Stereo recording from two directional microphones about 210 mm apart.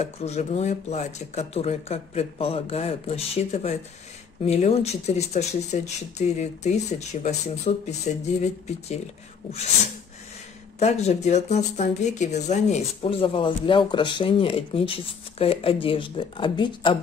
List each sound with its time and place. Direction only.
0.0 s speech: 30° left (ahead or behind)
10.8 s speech: 30° left (ahead or behind)